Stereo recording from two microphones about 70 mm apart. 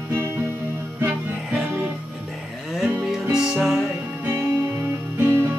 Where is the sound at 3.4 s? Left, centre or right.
Centre.